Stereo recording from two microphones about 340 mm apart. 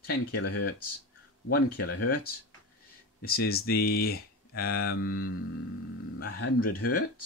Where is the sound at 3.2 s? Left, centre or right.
Left.